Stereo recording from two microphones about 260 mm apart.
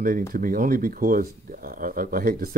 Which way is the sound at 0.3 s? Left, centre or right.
Right.